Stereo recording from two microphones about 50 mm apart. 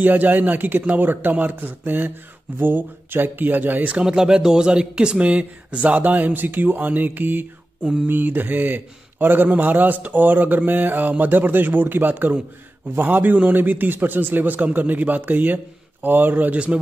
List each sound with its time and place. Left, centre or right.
0.0 s a man's voice: right
4.0 s a man's voice: centre